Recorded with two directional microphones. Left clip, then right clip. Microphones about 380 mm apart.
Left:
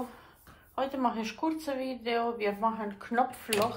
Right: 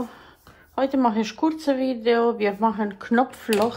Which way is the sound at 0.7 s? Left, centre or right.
Right.